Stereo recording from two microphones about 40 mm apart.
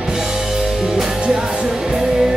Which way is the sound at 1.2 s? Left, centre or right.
Right.